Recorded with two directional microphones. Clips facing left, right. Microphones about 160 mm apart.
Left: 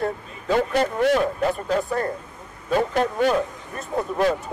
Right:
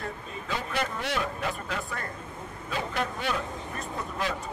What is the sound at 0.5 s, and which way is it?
A man's voice, 50° left (ahead or behind).